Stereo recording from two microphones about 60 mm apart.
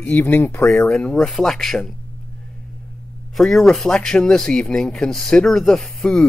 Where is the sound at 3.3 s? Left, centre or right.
Centre.